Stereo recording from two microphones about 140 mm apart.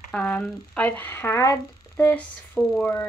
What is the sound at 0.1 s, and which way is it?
Speech, 10° left (ahead or behind).